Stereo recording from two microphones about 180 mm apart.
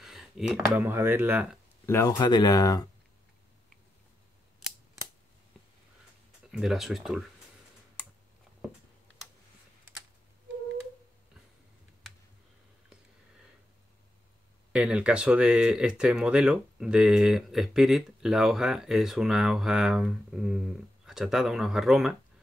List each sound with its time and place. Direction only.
0.0 s speech: centre (ahead or behind)
1.9 s speech: 20° left (ahead or behind)
6.5 s speech: centre (ahead or behind)
14.7 s speech: 5° right (ahead or behind)